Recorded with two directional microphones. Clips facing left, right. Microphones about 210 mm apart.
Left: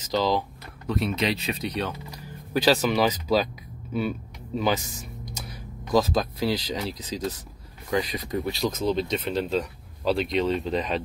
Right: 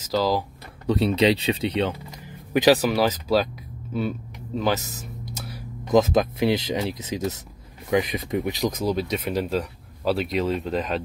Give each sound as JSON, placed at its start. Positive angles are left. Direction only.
{"t": 0.0, "sound": "speech", "side_deg": -5}
{"t": 0.8, "sound": "speech", "side_deg": -30}
{"t": 2.8, "sound": "speech", "side_deg": -5}
{"t": 4.6, "sound": "a sound", "side_deg": -5}
{"t": 5.9, "sound": "speech", "side_deg": -20}